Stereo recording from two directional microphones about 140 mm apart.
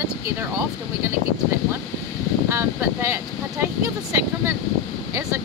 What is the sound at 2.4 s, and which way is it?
Speech, 20° right (ahead or behind).